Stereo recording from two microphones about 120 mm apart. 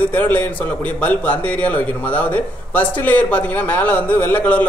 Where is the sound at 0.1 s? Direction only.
15° left (ahead or behind).